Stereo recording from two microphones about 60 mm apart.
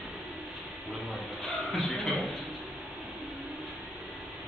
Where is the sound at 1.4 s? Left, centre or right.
Centre.